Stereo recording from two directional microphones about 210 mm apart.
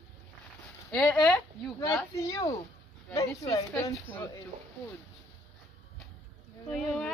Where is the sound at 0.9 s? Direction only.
5° left (ahead or behind).